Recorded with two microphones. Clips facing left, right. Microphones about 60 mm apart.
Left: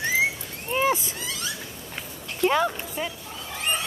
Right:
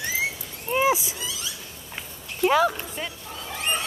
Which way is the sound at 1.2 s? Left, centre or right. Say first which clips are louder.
Left 1 dB; left.